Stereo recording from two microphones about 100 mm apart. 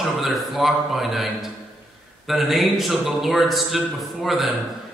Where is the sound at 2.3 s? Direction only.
Centre (ahead or behind).